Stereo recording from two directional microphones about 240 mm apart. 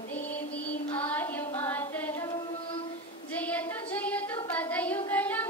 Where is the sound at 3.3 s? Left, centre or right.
Centre.